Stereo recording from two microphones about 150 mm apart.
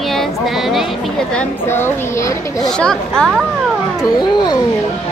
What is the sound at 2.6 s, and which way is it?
Speech, 5° left (ahead or behind).